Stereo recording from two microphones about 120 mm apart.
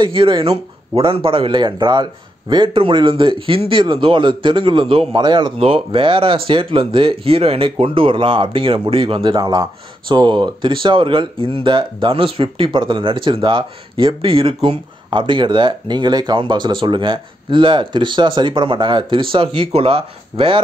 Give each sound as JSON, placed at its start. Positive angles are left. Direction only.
{"t": 0.0, "sound": "speech", "side_deg": -45}
{"t": 5.6, "sound": "speech", "side_deg": -50}